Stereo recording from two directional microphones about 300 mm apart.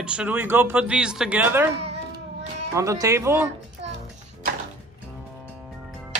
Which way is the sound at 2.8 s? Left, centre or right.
Centre.